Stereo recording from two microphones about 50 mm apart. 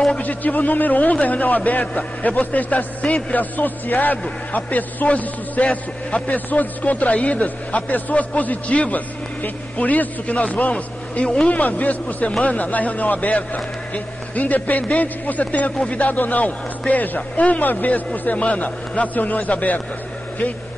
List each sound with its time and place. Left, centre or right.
0.2 s a man's voice: left